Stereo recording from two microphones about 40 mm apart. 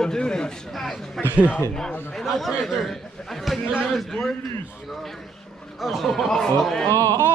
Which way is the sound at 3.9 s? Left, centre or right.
Centre.